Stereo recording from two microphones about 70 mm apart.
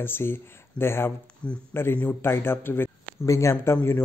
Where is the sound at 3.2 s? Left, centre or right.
Left.